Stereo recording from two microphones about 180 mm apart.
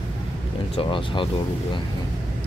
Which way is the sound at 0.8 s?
30° left (ahead or behind).